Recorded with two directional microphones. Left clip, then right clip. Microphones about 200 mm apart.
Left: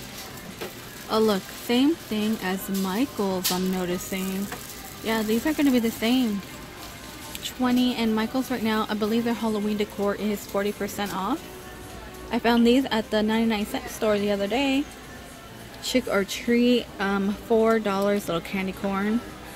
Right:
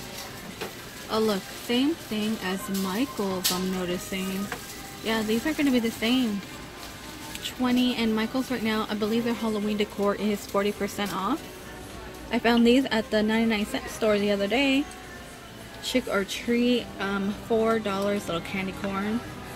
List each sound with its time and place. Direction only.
1.1 s speech: 20° left (ahead or behind)
7.4 s speech: 5° left (ahead or behind)
10.0 s speech: 10° right (ahead or behind)
15.9 s speech: 10° left (ahead or behind)